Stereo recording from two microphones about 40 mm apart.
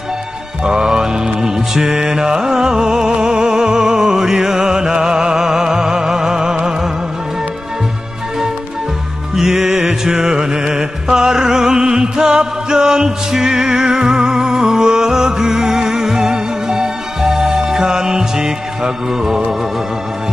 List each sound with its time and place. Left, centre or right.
0.7 s mantra: centre
9.3 s music: centre